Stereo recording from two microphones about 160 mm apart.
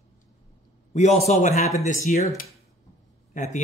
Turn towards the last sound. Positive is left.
turn(degrees=50)  # may be behind; listen again after turning